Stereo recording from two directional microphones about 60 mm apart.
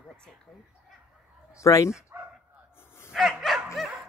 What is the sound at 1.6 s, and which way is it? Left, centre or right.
Speech, left.